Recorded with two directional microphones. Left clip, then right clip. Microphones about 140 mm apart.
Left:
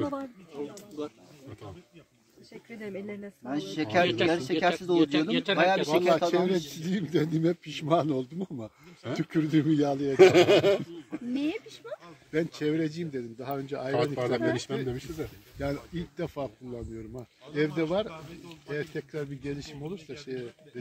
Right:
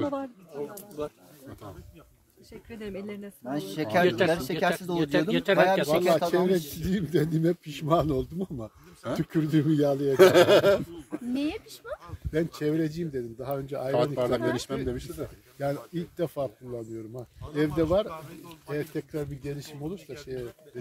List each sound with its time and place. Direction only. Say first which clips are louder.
0.7 s a sound: right 2 dB; 45° right (ahead or behind)
2.7 s speech: right 1 dB; 5° left (ahead or behind)
3.4 s a man's voice: right 1 dB; 55° right (ahead or behind)
10.1 s speech: right 1 dB; 20° right (ahead or behind)
11.3 s speech: even; 5° right (ahead or behind)
12.3 s a man's voice: right 1 dB; 50° right (ahead or behind)
13.9 s speech: right 2 dB; 20° right (ahead or behind)
14.7 s speech: right 1 dB; 35° right (ahead or behind)
15.6 s a man's voice: right 3 dB; 50° right (ahead or behind)